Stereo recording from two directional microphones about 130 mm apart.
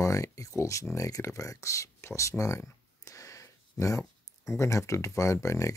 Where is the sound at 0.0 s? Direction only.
25° left (ahead or behind).